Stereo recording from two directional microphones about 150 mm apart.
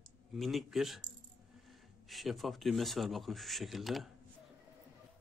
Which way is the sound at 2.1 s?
Centre (ahead or behind).